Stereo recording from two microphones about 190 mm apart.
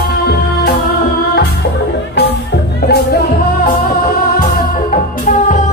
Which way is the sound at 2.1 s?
60° left (ahead or behind).